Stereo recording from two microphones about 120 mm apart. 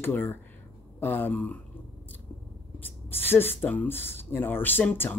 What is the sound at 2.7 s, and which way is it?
Speech, 15° left (ahead or behind).